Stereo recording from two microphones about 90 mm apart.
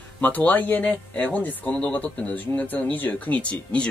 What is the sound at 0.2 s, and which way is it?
Speech, 15° left (ahead or behind).